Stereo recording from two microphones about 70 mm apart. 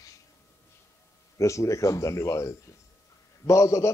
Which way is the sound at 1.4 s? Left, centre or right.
Left.